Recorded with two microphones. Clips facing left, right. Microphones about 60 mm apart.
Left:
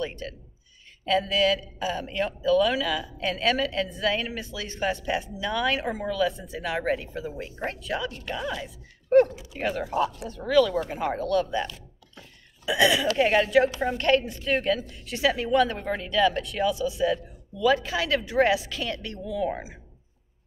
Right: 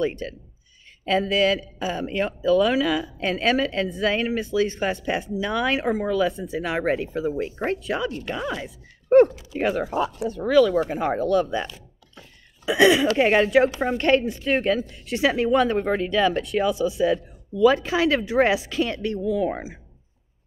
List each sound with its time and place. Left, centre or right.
0.0 s speech: right
9.9 s speech: centre
12.6 s speech: right